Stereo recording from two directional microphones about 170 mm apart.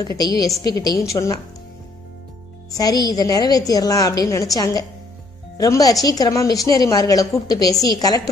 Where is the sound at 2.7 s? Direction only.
25° left (ahead or behind).